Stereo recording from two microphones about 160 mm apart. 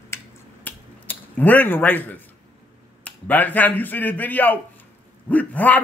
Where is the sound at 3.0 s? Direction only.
10° left (ahead or behind).